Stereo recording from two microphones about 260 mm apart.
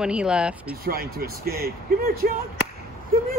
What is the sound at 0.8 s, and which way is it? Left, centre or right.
Speech, right.